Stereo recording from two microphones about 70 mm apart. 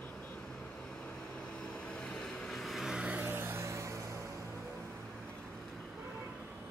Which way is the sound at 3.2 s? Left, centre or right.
Right.